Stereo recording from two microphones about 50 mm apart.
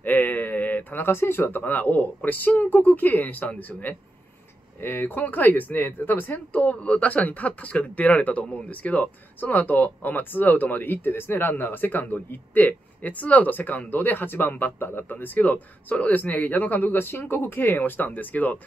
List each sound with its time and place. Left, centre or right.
0.0 s speech: left
4.7 s speech: left